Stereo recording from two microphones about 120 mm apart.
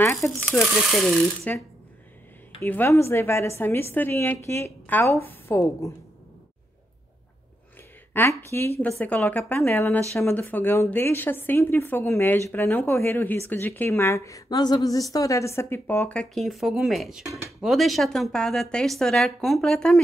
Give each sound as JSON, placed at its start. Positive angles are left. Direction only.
{"t": 0.0, "sound": "speech", "side_deg": 25}
{"t": 0.6, "sound": "speech", "side_deg": 5}
{"t": 2.6, "sound": "a woman's voice", "side_deg": 20}
{"t": 8.1, "sound": "a woman's voice", "side_deg": 20}
{"t": 16.1, "sound": "a woman's voice", "side_deg": 5}